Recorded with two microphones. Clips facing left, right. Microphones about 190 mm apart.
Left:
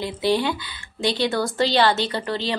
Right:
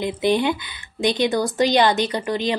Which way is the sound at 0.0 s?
20° right (ahead or behind).